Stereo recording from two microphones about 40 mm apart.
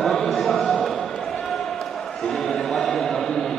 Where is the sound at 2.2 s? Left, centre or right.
Centre.